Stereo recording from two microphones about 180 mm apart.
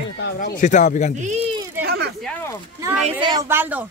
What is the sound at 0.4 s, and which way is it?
Speech, 45° left (ahead or behind).